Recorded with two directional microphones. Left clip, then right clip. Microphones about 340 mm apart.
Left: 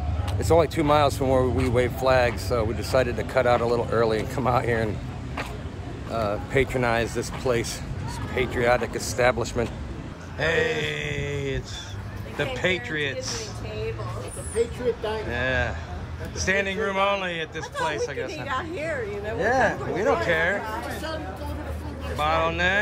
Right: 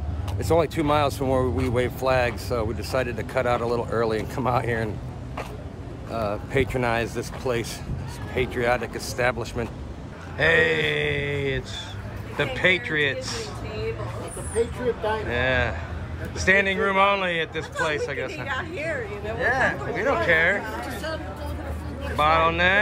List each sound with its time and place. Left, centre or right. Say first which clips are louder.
0.4 s speech: left 1 dB; centre
6.1 s speech: left 1 dB; centre
10.3 s a man's voice: right 4 dB; centre
13.2 s speech: even; centre
15.2 s a man's voice: right 2 dB; centre
18.4 s a woman's voice: even; left
19.5 s a man's voice: left 3 dB; centre
22.1 s a man's voice: right 4 dB; centre